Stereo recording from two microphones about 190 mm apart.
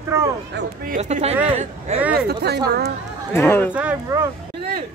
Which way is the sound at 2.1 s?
55° right (ahead or behind).